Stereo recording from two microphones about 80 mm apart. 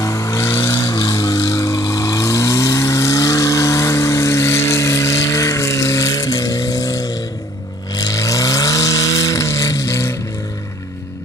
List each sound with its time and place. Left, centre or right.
0.0 s vehicle: left